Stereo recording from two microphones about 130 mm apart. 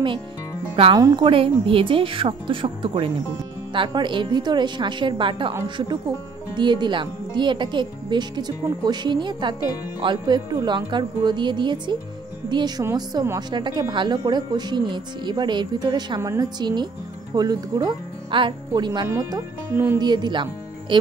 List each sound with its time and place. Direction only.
0.9 s speech: 35° right (ahead or behind)
6.5 s speech: 35° right (ahead or behind)
19.7 s speech: 15° right (ahead or behind)
20.0 s speech: 35° right (ahead or behind)